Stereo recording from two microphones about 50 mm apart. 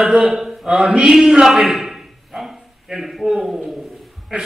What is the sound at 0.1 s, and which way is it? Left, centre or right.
A man's voice, centre.